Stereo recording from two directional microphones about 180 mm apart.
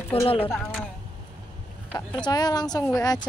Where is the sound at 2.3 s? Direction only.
20° left (ahead or behind).